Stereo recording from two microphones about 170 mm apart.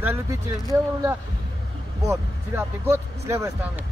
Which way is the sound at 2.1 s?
15° right (ahead or behind).